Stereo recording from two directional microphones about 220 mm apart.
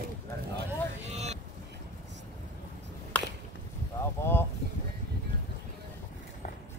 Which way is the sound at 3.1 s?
5° left (ahead or behind).